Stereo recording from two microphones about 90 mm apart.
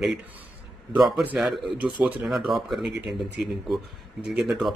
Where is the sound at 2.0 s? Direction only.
20° right (ahead or behind).